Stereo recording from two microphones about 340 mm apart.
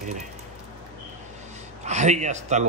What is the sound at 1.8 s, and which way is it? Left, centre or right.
Speech, centre.